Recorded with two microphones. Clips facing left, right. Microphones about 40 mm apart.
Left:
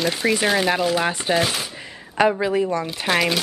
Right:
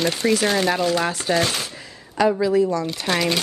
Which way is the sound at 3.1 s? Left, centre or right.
Centre.